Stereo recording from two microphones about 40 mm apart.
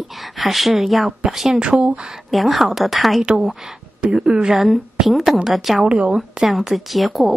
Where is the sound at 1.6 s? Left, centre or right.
Right.